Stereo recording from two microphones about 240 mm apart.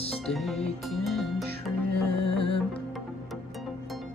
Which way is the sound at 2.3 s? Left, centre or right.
Left.